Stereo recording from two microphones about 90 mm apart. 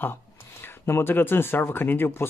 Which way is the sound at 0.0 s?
25° left (ahead or behind).